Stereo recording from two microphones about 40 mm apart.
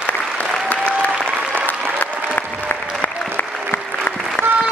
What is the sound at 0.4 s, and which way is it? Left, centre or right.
Applause, left.